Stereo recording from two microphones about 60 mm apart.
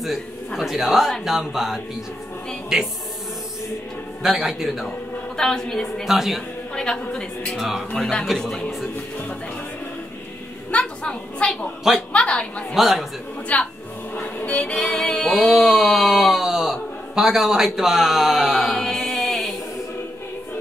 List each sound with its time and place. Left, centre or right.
0.0 s a man's voice: centre
4.2 s a man's voice: centre
5.4 s a woman's voice: centre
6.0 s a man's voice: centre
6.7 s a woman's voice: centre
7.5 s a man's voice: centre
8.4 s a woman's voice: centre
10.7 s a sound: centre
12.1 s a woman's voice: centre
12.7 s a man's voice: centre
13.5 s a woman's voice: left
14.1 s music: left; by 19.5 s centre